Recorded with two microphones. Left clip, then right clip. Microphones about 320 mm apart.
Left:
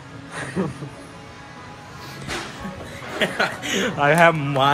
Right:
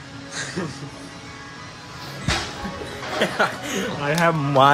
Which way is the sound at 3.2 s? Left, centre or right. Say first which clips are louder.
Right 1 dB; centre.